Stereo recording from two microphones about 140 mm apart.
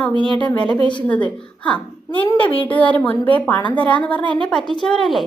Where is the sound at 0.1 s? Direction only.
35° right (ahead or behind).